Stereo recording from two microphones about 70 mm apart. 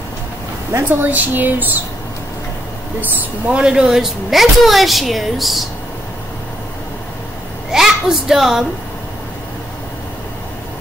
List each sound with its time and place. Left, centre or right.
0.7 s a woman's voice: right
3.0 s a woman's voice: right
3.5 s speech: centre
7.7 s a child's voice: centre